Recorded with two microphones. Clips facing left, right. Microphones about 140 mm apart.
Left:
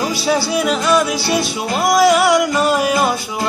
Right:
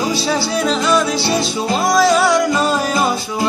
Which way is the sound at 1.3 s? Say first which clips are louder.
Even; 25° right (ahead or behind).